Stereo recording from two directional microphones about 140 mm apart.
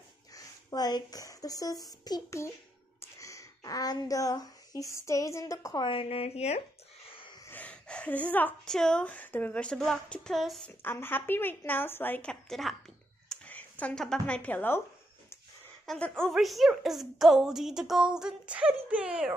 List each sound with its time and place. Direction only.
0.3 s a woman's voice: 25° left (ahead or behind)
5.9 s speech: 45° left (ahead or behind)
7.1 s a sound: 40° left (ahead or behind)
7.4 s a woman's voice: 10° left (ahead or behind)
10.8 s a woman's voice: 15° left (ahead or behind)
15.8 s a woman's voice: 5° left (ahead or behind)